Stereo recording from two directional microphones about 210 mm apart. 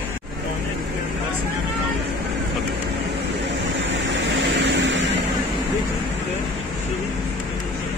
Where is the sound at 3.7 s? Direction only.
60° right (ahead or behind).